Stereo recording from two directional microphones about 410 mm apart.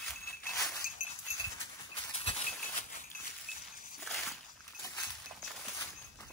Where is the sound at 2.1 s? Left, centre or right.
Centre.